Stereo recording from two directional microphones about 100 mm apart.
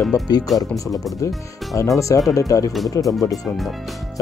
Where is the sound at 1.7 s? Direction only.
35° left (ahead or behind).